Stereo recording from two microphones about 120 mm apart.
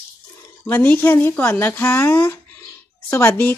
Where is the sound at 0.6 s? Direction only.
15° left (ahead or behind).